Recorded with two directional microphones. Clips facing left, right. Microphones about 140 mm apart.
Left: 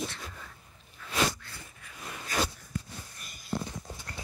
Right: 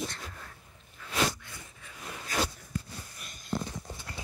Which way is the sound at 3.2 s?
5° left (ahead or behind).